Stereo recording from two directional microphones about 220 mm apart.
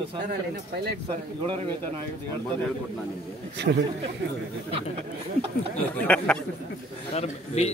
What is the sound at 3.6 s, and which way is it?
Speech, 50° right (ahead or behind).